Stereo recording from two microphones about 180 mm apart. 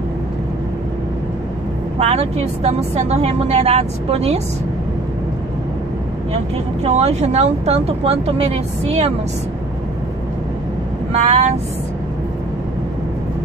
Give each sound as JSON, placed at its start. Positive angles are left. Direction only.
{"t": 2.0, "sound": "speech", "side_deg": -35}
{"t": 6.3, "sound": "speech", "side_deg": -35}
{"t": 11.1, "sound": "speech", "side_deg": -40}